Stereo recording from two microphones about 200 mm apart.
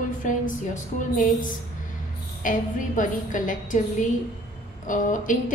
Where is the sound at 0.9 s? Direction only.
40° left (ahead or behind).